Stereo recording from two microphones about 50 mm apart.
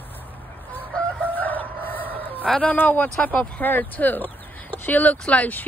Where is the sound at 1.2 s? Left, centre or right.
Left.